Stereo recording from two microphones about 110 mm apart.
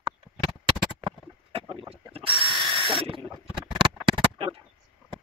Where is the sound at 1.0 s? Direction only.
50° right (ahead or behind).